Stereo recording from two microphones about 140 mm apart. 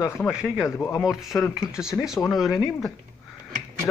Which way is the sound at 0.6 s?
20° left (ahead or behind).